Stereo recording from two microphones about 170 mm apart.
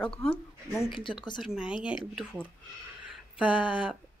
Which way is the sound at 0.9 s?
30° left (ahead or behind).